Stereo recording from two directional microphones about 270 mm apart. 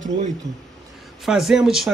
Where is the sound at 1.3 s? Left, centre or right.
Centre.